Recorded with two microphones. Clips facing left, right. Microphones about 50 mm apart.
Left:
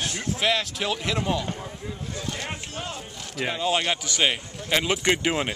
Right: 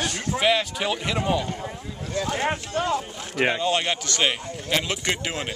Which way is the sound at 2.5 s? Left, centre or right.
Right.